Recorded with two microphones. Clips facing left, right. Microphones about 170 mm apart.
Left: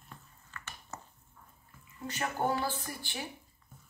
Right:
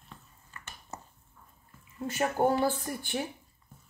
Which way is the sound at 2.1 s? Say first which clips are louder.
Right 6 dB; 55° right (ahead or behind).